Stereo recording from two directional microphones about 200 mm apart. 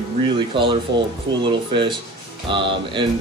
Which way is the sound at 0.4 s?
25° right (ahead or behind).